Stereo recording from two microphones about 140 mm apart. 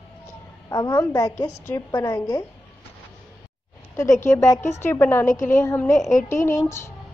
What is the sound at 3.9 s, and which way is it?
A woman's voice, 20° left (ahead or behind).